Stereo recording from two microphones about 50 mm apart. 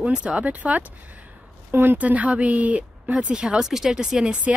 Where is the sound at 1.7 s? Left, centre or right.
Right.